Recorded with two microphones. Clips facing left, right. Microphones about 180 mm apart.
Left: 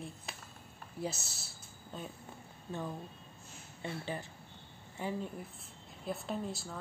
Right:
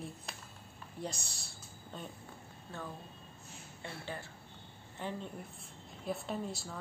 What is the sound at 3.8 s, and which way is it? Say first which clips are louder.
Speech: left 4 dB; 20° left (ahead or behind).